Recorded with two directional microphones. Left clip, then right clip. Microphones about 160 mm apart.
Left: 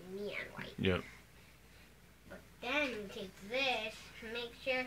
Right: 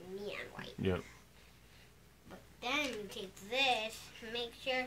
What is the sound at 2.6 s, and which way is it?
A woman's voice, 30° right (ahead or behind).